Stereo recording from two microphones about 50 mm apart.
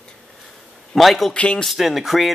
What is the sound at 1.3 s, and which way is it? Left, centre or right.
Speech, centre.